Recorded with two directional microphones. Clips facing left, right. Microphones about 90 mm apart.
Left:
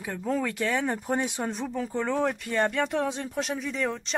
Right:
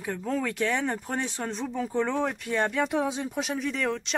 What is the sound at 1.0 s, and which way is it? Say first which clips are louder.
Speech: left 3 dB; 10° left (ahead or behind).